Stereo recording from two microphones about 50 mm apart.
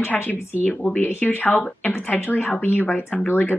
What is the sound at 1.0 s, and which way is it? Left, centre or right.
Speech, left.